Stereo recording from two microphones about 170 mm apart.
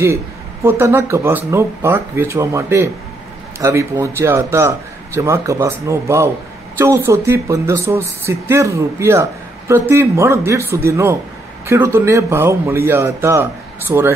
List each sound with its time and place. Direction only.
0.7 s speech: 15° right (ahead or behind)